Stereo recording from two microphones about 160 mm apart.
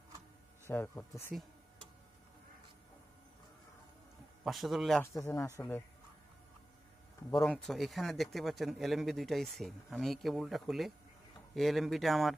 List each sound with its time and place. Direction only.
0.7 s speech: 15° left (ahead or behind)
4.5 s a man's voice: centre (ahead or behind)
5.0 s speech: 15° left (ahead or behind)
7.3 s a man's voice: 5° left (ahead or behind)